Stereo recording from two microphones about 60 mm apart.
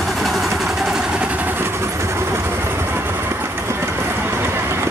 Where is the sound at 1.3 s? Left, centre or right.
Right.